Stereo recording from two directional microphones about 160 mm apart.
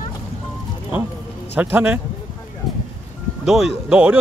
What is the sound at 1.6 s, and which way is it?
Speech, 10° right (ahead or behind).